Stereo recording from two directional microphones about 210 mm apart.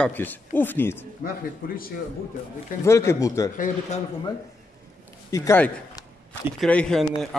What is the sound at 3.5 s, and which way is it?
Speech, 40° left (ahead or behind).